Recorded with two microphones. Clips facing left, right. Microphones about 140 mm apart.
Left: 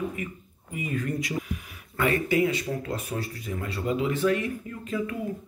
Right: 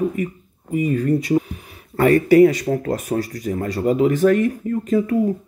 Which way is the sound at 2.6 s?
50° right (ahead or behind).